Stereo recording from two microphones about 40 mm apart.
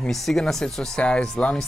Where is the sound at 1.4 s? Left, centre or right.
Left.